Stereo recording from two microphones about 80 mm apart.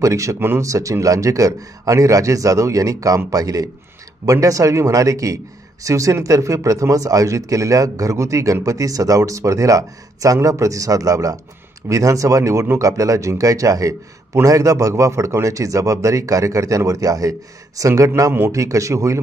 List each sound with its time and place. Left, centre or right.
0.0 s speech: right
0.4 s speech: right
0.7 s a man's voice: right